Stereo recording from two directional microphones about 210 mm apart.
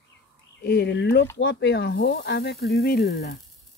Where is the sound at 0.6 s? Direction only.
50° left (ahead or behind).